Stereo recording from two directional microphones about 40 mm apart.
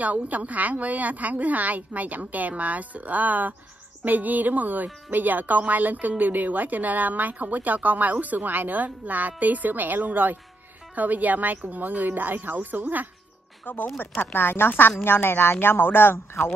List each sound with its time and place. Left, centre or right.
0.0 s a woman's voice: right
13.7 s speech: left
14.2 s speech: left